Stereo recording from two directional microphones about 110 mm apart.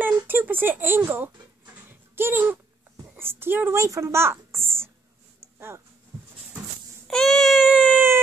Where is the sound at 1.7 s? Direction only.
20° right (ahead or behind).